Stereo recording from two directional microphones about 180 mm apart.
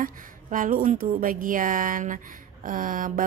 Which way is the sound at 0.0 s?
50° right (ahead or behind).